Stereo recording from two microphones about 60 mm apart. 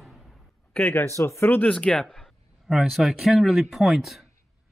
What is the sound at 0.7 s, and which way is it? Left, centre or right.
Speech, left.